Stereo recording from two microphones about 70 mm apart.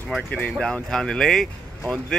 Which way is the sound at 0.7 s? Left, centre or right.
Centre.